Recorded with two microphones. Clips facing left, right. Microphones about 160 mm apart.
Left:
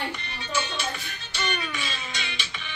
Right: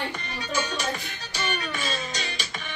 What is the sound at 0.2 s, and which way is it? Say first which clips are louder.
Music: right 1 dB; 40° right (ahead or behind).